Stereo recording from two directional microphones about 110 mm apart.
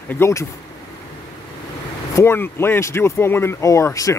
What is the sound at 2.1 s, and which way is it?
Speech, 25° left (ahead or behind).